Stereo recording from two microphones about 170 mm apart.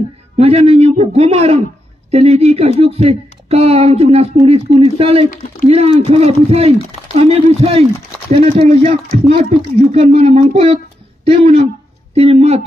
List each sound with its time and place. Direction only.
0.4 s speech: 35° right (ahead or behind)